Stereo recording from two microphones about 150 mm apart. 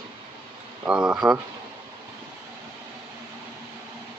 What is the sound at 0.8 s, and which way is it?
Speech, 5° right (ahead or behind).